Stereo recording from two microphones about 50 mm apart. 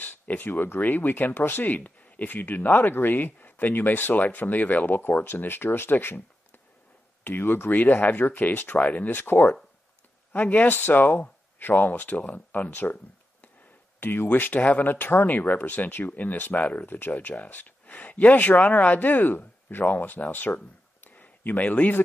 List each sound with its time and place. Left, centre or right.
0.0 s a sound: left
0.5 s speech: left
7.2 s speech: left
7.7 s speech: left
9.2 s speech: left
10.3 s speech: left
13.9 s speech: left